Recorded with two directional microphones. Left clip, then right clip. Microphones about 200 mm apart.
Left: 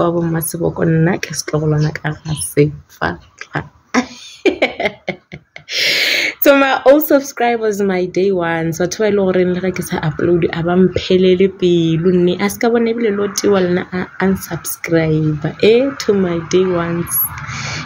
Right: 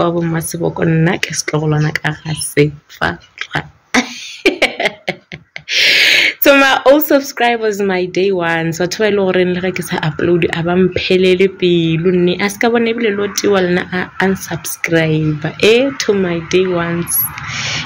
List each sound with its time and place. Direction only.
0.0 s speech: 10° left (ahead or behind)